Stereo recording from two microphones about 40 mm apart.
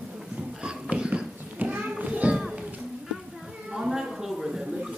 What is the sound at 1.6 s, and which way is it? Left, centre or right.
Children playing, right.